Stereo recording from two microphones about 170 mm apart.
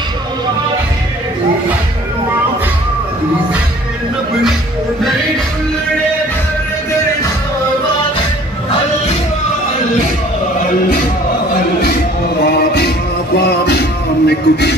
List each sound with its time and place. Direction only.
13.4 s music: 75° left (ahead or behind)